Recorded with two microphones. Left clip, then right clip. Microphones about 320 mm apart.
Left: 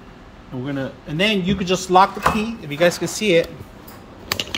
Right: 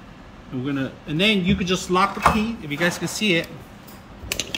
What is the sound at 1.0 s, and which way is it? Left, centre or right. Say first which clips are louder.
Speech: left 1 dB; centre.